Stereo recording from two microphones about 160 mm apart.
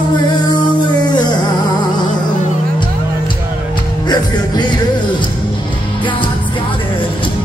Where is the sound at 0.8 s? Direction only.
30° left (ahead or behind).